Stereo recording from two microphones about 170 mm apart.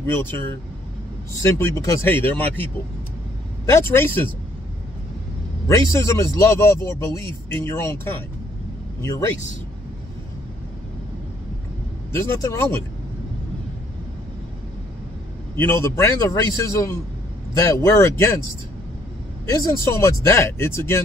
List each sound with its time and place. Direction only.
0.0 s speech: 15° left (ahead or behind)
5.7 s speech: 15° left (ahead or behind)
12.1 s speech: 15° left (ahead or behind)
15.5 s speech: 15° left (ahead or behind)
19.5 s speech: 20° left (ahead or behind)